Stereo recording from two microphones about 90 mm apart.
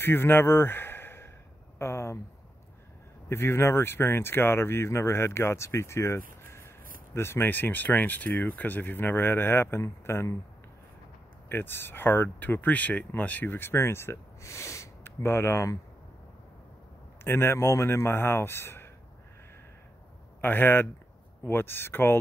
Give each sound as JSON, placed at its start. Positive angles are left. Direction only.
{"t": 0.0, "sound": "speech", "side_deg": 25}
{"t": 1.8, "sound": "a sound", "side_deg": 30}
{"t": 3.3, "sound": "speech", "side_deg": 25}
{"t": 11.4, "sound": "speech", "side_deg": 25}
{"t": 17.2, "sound": "speech", "side_deg": 25}
{"t": 20.3, "sound": "speech", "side_deg": 25}